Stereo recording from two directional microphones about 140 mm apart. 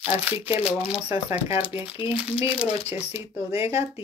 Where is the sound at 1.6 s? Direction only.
40° left (ahead or behind).